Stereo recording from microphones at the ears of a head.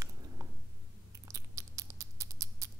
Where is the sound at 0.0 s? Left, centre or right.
Right.